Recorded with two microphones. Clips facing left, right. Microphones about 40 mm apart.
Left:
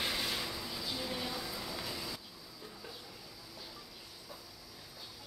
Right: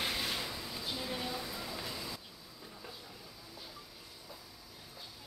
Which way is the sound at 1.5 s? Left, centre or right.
Right.